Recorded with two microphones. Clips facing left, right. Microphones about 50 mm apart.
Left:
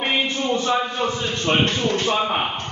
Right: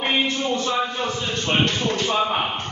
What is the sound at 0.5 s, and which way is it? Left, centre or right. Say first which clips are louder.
A man's voice: left 2 dB; left.